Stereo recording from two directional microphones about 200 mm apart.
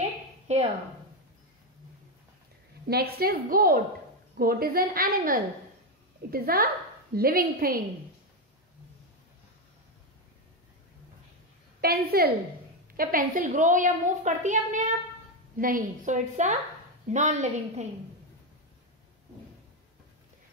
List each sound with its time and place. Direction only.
0.5 s a sound: 35° right (ahead or behind)
2.9 s a woman's voice: 50° right (ahead or behind)
11.8 s a woman's voice: 50° right (ahead or behind)